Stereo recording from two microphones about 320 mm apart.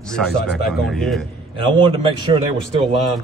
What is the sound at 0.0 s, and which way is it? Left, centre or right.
A man's voice, centre.